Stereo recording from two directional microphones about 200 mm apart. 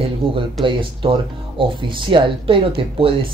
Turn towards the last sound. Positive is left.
turn(degrees=-25)  # may be behind; listen again after turning